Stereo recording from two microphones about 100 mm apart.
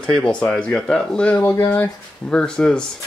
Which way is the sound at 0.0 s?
10° left (ahead or behind).